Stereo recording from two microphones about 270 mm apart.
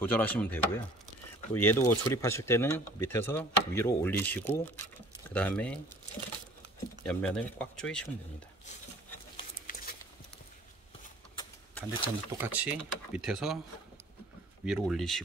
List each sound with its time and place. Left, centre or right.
0.0 s speech: centre
7.1 s speech: centre
9.4 s a sound: left
11.3 s a sound: centre
12.4 s speech: centre
14.6 s speech: centre